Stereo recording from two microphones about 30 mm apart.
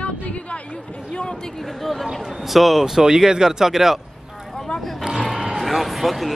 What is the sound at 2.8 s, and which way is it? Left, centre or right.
Speech, centre.